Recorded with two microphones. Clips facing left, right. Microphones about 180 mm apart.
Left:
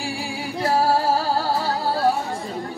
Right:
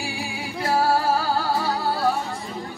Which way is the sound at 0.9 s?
40° left (ahead or behind).